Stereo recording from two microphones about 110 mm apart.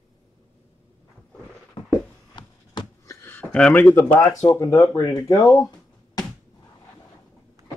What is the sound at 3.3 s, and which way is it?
Speech, 10° left (ahead or behind).